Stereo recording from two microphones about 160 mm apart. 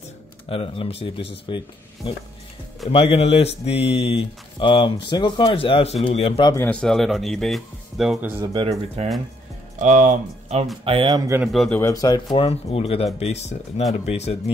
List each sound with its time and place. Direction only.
0.5 s speech: 35° left (ahead or behind)
6.5 s a man's voice: 10° left (ahead or behind); by 8.5 s 10° right (ahead or behind)
8.5 s speech: 40° right (ahead or behind)
10.8 s speech: 35° right (ahead or behind)
11.4 s a man's voice: centre (ahead or behind)
11.8 s speech: 25° left (ahead or behind); by 14.5 s 45° left (ahead or behind)